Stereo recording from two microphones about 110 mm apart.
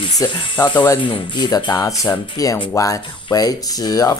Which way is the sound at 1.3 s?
40° left (ahead or behind).